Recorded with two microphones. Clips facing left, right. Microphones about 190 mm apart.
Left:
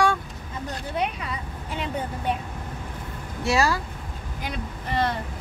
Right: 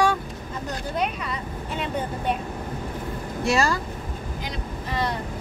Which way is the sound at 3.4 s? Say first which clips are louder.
Even; centre (ahead or behind).